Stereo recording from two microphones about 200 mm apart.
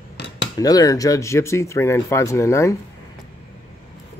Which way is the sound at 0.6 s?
20° left (ahead or behind).